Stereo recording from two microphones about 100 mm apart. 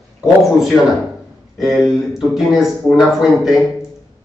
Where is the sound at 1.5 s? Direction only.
5° right (ahead or behind).